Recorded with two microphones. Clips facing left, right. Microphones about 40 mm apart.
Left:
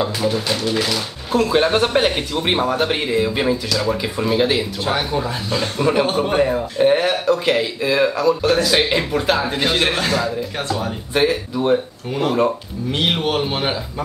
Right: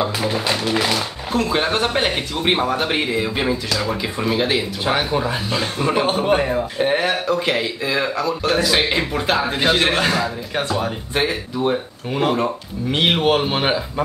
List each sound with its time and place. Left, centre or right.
0.0 s speech: centre
1.3 s speech: centre
12.1 s speech: right